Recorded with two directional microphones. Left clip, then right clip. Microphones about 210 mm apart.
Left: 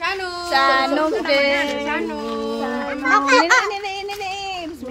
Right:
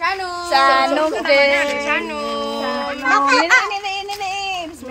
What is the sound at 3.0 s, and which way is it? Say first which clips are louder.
Speech: even; 25° right (ahead or behind).